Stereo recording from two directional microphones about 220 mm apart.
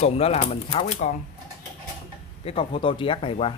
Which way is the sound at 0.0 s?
30° left (ahead or behind).